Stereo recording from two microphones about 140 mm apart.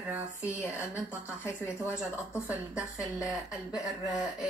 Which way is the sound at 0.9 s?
15° left (ahead or behind).